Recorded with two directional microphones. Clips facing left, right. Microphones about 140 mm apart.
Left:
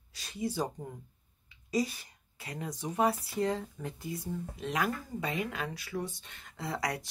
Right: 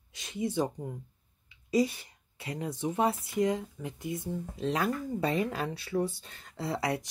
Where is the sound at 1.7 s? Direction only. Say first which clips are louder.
Right 4 dB; 25° right (ahead or behind).